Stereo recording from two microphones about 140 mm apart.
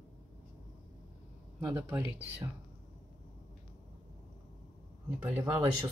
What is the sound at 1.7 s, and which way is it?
Speech, 15° right (ahead or behind).